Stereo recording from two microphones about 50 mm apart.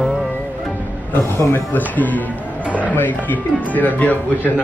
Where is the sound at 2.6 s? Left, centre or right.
Right.